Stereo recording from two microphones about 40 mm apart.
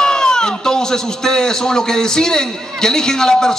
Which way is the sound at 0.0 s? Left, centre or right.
Centre.